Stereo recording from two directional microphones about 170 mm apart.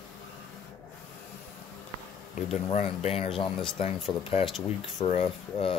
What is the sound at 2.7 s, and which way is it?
Speech, 40° left (ahead or behind).